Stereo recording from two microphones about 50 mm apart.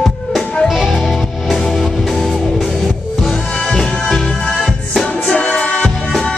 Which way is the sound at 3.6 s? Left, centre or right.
Centre.